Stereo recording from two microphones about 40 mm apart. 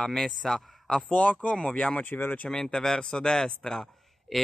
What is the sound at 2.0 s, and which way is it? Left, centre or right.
Speech, left.